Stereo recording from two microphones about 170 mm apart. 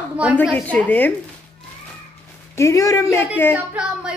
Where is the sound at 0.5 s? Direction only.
10° left (ahead or behind).